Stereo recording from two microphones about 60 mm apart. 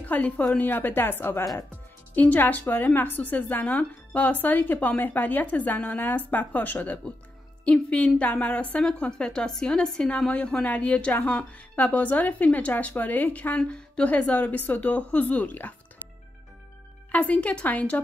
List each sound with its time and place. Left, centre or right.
0.0 s a woman's voice: left
2.1 s speech: left
17.1 s speech: left